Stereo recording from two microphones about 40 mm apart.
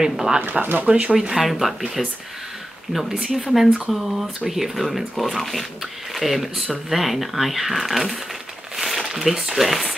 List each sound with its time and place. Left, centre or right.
0.0 s speech: centre
0.4 s speech: right
1.3 s speech: centre
2.9 s speech: centre
8.7 s crumpling: centre